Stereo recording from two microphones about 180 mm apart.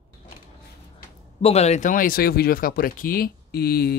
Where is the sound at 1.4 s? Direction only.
35° left (ahead or behind).